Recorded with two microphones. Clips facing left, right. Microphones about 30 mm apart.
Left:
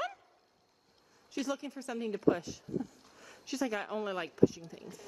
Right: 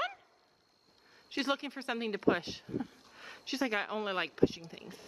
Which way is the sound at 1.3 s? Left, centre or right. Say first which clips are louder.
Right 3 dB; right.